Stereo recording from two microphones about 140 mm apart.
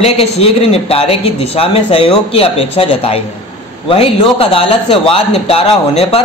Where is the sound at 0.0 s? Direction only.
45° left (ahead or behind).